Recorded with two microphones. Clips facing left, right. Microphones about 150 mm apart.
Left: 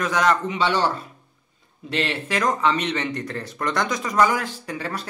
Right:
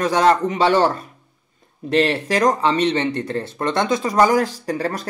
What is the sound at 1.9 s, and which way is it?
Speech, 40° right (ahead or behind).